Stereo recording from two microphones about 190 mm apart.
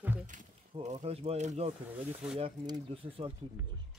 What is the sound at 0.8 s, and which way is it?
Speech, 35° right (ahead or behind).